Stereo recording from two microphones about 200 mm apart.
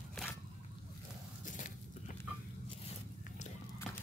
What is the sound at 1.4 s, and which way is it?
Biting, 40° left (ahead or behind).